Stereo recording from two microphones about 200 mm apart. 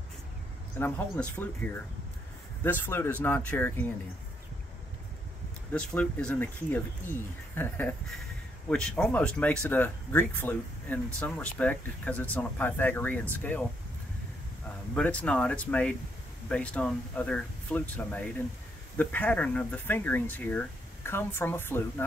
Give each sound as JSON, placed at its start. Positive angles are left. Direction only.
{"t": 0.7, "sound": "speech", "side_deg": 10}
{"t": 5.7, "sound": "speech", "side_deg": 5}
{"t": 15.0, "sound": "speech", "side_deg": 5}